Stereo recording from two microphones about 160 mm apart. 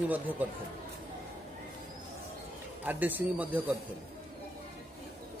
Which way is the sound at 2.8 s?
10° right (ahead or behind).